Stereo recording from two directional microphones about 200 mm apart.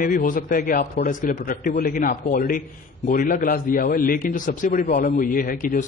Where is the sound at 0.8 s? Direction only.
40° left (ahead or behind).